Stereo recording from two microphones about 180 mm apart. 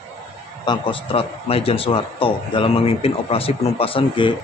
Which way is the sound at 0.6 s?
30° left (ahead or behind).